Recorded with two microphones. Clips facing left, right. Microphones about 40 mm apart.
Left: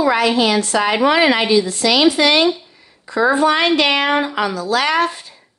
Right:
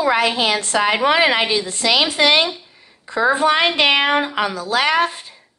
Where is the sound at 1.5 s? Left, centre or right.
Right; by 5.2 s centre.